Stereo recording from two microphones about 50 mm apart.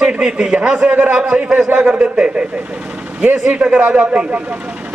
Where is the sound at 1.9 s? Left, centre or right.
Centre.